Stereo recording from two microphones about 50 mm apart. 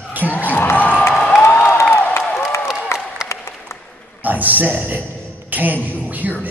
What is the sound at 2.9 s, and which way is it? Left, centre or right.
Applause, left.